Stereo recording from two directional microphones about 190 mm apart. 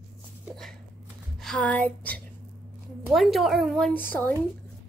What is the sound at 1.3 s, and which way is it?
A woman's voice, 5° left (ahead or behind).